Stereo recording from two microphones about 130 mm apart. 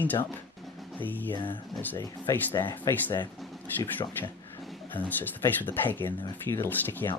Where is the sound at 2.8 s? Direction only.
35° left (ahead or behind).